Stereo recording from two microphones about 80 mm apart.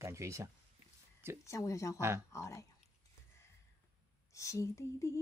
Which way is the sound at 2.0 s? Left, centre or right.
Right.